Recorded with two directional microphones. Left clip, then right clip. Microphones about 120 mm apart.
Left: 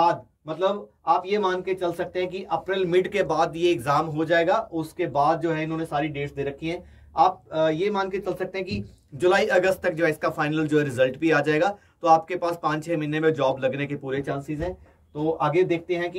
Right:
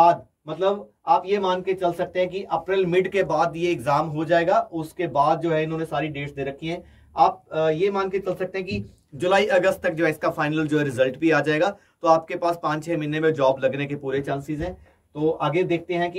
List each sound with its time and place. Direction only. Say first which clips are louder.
0.0 s speech: right 5 dB; 55° left (ahead or behind); by 14.7 s 10° left (ahead or behind)